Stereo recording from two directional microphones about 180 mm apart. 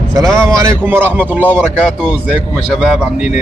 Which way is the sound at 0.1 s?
20° right (ahead or behind).